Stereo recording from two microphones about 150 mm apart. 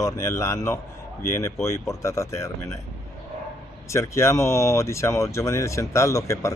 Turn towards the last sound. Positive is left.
turn(degrees=20)  # may be behind; listen again after turning